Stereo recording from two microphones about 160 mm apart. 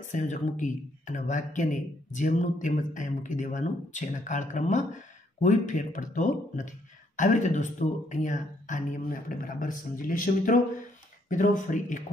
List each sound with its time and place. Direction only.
0.1 s speech: 50° left (ahead or behind)